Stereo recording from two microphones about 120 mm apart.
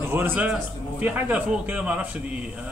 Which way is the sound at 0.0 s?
20° right (ahead or behind).